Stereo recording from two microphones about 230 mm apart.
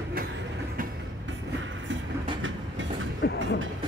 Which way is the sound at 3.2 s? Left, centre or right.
Left.